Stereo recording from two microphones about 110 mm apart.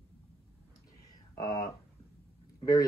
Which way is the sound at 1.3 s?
35° left (ahead or behind).